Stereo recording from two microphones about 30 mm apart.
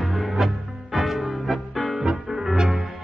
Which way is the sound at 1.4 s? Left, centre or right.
Centre.